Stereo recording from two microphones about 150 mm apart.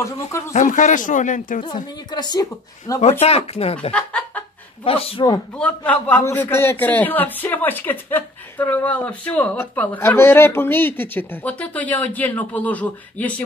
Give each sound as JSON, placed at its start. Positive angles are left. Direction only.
{"t": 0.5, "sound": "speech", "side_deg": 55}
{"t": 2.1, "sound": "speech", "side_deg": 30}
{"t": 3.0, "sound": "speech", "side_deg": 45}
{"t": 3.9, "sound": "speech", "side_deg": 10}
{"t": 4.8, "sound": "speech", "side_deg": 40}
{"t": 5.6, "sound": "a man's voice", "side_deg": 10}